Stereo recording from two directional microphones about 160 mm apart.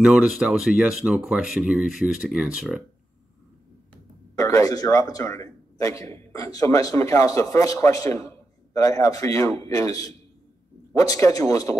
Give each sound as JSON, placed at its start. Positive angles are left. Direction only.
{"t": 0.0, "sound": "speech", "side_deg": -5}
{"t": 4.4, "sound": "a man's voice", "side_deg": 20}